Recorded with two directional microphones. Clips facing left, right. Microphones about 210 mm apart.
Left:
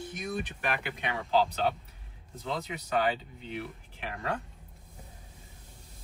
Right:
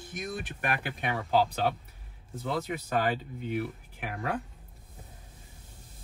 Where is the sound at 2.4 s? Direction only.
50° right (ahead or behind).